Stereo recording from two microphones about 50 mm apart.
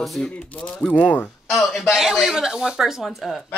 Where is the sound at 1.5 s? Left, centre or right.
Centre.